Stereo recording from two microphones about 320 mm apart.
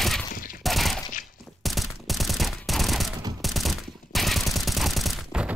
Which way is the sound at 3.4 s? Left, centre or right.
Centre.